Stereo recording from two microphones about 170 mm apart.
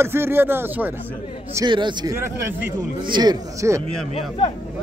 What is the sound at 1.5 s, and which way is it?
Speech, 25° right (ahead or behind).